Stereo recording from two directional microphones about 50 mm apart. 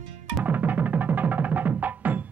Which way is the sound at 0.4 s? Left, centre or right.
Right.